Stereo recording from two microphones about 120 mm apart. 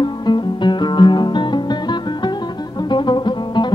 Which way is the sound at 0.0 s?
40° left (ahead or behind).